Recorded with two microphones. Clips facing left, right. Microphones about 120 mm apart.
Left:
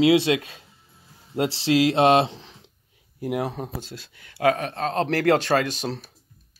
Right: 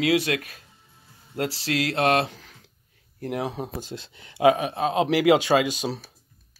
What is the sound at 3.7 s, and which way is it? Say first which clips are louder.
Speech: right 1 dB; 20° right (ahead or behind).